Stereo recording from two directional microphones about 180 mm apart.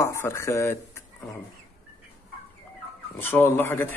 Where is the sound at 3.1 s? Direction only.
10° left (ahead or behind).